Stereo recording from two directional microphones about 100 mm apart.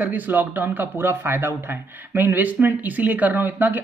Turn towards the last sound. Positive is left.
turn(degrees=-20)  # may be behind; listen again after turning